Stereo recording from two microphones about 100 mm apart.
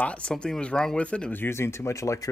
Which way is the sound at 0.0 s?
10° left (ahead or behind).